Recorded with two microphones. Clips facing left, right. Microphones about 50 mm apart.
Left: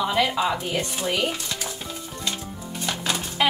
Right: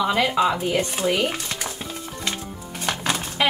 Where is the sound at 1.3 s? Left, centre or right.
Right.